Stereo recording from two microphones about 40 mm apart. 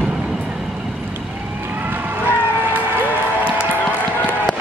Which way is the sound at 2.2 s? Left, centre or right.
Right.